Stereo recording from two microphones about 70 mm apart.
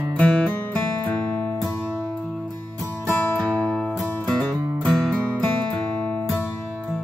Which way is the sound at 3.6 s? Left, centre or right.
Left.